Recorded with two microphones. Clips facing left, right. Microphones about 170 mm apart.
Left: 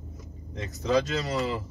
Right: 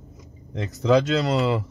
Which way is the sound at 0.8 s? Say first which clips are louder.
Right 6 dB; 65° right (ahead or behind).